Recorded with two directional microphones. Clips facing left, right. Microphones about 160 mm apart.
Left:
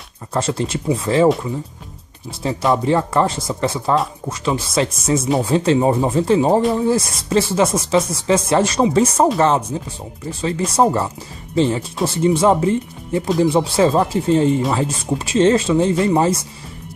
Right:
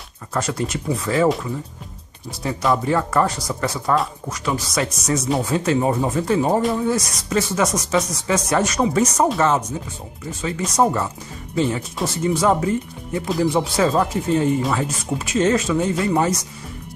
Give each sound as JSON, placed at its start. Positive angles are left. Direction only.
{"t": 0.3, "sound": "speech", "side_deg": 25}
{"t": 2.4, "sound": "speech", "side_deg": 25}
{"t": 10.8, "sound": "speech", "side_deg": 30}